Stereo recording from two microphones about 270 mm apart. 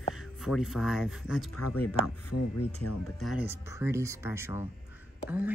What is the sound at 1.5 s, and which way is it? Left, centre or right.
Speech, left.